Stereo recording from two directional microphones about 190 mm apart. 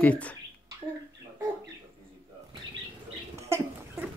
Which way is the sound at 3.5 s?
15° right (ahead or behind).